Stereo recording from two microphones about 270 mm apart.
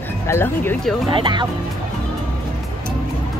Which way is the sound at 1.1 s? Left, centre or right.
Centre.